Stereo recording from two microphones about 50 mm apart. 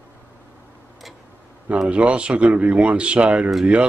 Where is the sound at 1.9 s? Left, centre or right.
Right.